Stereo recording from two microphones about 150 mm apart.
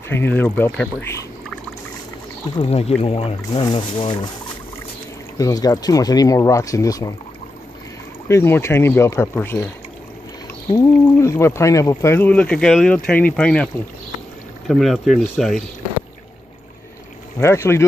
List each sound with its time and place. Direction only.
0.1 s speech: 15° left (ahead or behind)
2.6 s speech: 40° left (ahead or behind)
5.4 s speech: 25° left (ahead or behind)
8.3 s speech: 15° left (ahead or behind)
10.7 s speech: 20° left (ahead or behind)
14.7 s speech: centre (ahead or behind)
17.4 s speech: 20° left (ahead or behind)